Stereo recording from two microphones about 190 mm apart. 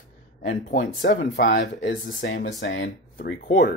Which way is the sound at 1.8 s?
75° left (ahead or behind).